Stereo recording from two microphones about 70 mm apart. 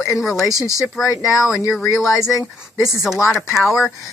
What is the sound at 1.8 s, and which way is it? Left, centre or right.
Speech, left.